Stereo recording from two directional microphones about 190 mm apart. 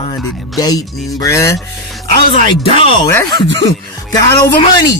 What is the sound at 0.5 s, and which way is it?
Speech, 20° left (ahead or behind).